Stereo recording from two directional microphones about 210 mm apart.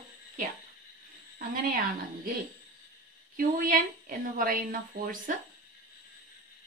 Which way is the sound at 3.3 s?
40° right (ahead or behind).